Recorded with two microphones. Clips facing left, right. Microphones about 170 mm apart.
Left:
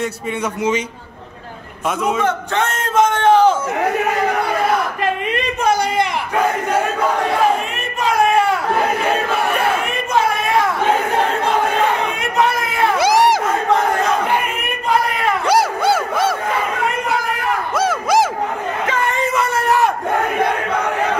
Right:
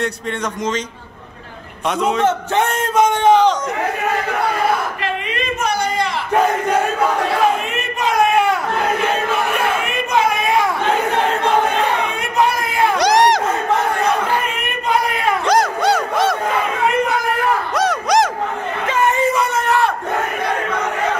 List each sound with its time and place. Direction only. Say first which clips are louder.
0.6 s a man's voice: left 5 dB; 10° left (ahead or behind)
2.2 s a man's voice: right 2 dB; 15° right (ahead or behind)
3.0 s speech: even; centre (ahead or behind)
12.9 s crowd: even; 5° left (ahead or behind)
15.1 s a sound: even; 10° left (ahead or behind)
17.7 s crowd: left 1 dB; 5° left (ahead or behind)